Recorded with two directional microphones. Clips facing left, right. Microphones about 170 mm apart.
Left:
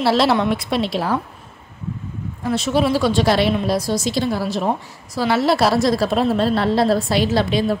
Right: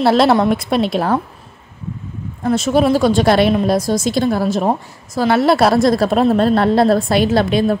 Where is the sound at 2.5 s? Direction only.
45° right (ahead or behind).